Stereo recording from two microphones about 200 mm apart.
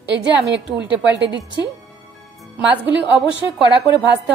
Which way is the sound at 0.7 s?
5° right (ahead or behind).